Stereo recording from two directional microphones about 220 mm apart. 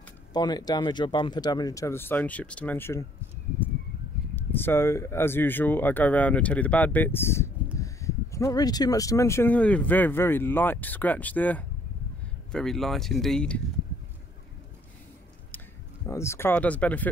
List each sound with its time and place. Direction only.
0.3 s speech: 20° left (ahead or behind)
4.4 s speech: 10° left (ahead or behind)
16.1 s speech: 10° left (ahead or behind)